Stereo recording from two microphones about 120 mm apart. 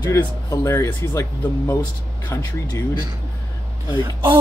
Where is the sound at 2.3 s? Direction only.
25° left (ahead or behind).